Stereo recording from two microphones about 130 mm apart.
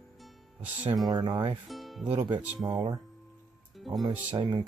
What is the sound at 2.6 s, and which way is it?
Speech, 30° right (ahead or behind).